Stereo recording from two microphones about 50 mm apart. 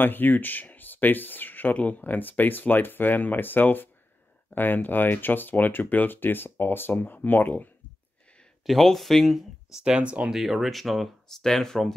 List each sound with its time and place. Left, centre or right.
0.0 s speech: left
8.6 s speech: centre
9.8 s speech: right
10.3 s speech: centre